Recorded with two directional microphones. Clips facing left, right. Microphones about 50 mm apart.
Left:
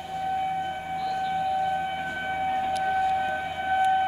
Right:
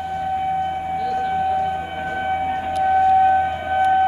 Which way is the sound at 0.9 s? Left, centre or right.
Right.